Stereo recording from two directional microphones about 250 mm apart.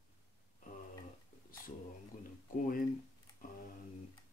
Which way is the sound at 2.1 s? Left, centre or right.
Left.